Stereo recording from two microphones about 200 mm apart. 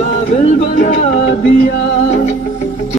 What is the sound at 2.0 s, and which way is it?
Speech, 35° left (ahead or behind).